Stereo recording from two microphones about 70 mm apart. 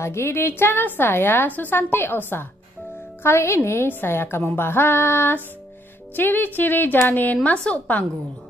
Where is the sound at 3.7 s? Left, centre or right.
Left.